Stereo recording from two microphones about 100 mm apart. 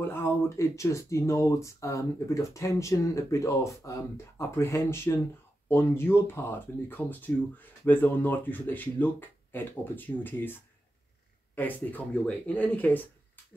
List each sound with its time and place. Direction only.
0.1 s speech: 25° left (ahead or behind)